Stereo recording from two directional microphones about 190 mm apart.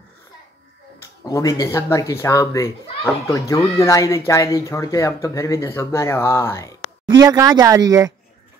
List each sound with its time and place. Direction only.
1.2 s a child's voice: 20° left (ahead or behind)
7.2 s speech: 20° right (ahead or behind)